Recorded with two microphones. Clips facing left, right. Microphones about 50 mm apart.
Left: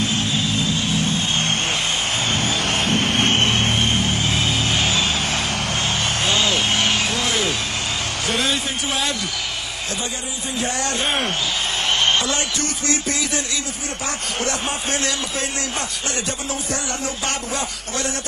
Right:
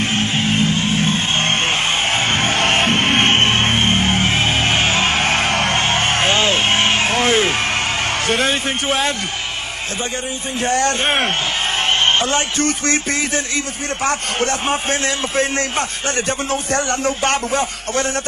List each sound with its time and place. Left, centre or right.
0.0 s music: right
8.3 s a man's voice: right
10.6 s a man's voice: right
12.1 s a man's voice: right